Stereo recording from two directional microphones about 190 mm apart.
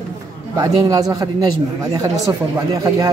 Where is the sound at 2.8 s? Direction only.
20° right (ahead or behind).